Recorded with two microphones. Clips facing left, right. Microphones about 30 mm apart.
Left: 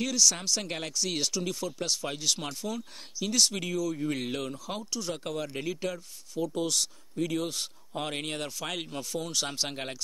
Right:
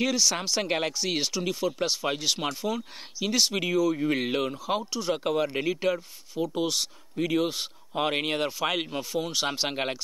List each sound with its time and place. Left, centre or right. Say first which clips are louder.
0.0 s speech: right 2 dB; right